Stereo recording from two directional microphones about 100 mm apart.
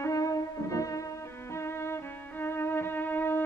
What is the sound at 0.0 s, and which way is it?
Music, 35° left (ahead or behind).